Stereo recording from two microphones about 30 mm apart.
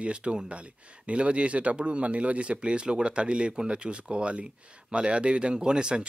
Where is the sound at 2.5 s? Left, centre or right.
Right.